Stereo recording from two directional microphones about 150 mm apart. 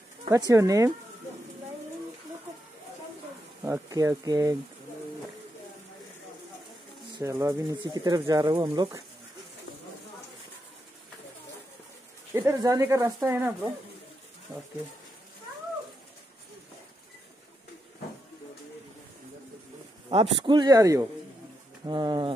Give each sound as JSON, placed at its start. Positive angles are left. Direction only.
{"t": 0.3, "sound": "speech", "side_deg": -20}
{"t": 3.6, "sound": "speech", "side_deg": -20}
{"t": 7.2, "sound": "speech", "side_deg": -20}
{"t": 12.4, "sound": "speech", "side_deg": -25}
{"t": 20.1, "sound": "speech", "side_deg": -35}